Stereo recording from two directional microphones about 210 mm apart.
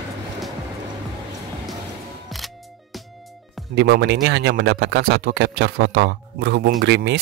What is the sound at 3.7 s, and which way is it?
Speech, 55° right (ahead or behind).